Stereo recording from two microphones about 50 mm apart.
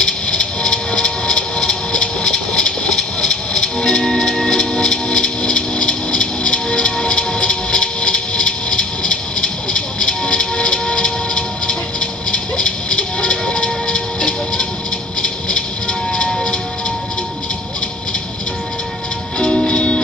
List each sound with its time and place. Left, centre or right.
0.0 s music: centre
19.3 s music: centre